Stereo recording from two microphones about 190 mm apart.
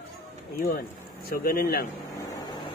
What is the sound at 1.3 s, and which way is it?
Speech, 55° left (ahead or behind).